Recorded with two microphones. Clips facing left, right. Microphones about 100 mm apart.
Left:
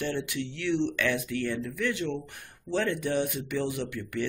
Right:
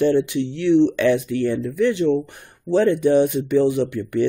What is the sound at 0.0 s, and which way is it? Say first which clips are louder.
Speech: right 13 dB; 25° right (ahead or behind).